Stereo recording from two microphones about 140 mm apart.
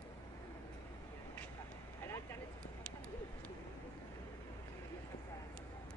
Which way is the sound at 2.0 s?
20° left (ahead or behind).